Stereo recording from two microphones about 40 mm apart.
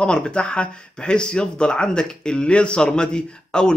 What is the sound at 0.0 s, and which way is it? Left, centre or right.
Speech, left.